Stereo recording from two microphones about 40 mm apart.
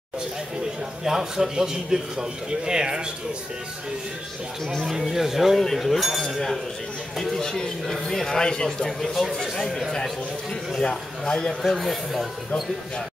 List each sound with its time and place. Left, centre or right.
1.0 s a man's voice: centre
5.0 s speech: centre
6.1 s speech: centre
10.8 s speech: centre